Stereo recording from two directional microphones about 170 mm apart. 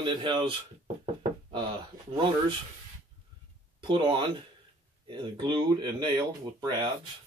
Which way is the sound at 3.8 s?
30° right (ahead or behind).